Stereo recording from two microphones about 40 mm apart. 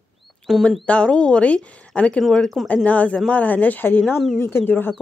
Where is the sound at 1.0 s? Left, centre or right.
Left.